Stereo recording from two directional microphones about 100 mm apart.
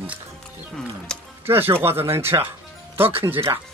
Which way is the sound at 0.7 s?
5° left (ahead or behind).